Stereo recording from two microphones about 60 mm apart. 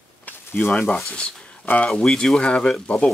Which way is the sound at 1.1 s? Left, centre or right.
Centre.